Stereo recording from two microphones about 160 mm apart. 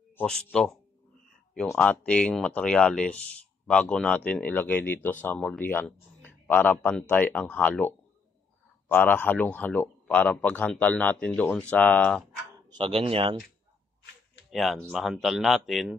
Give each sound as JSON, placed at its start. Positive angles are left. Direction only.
{"t": 0.1, "sound": "speech", "side_deg": 5}
{"t": 12.6, "sound": "speech", "side_deg": -30}
{"t": 14.5, "sound": "speech", "side_deg": 0}